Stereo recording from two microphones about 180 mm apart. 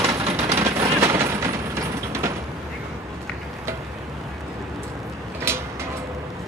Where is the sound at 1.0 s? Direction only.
15° right (ahead or behind).